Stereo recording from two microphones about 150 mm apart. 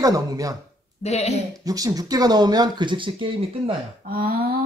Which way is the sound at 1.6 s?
25° right (ahead or behind).